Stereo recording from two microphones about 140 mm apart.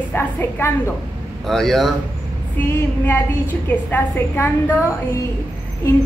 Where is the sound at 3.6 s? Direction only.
15° left (ahead or behind).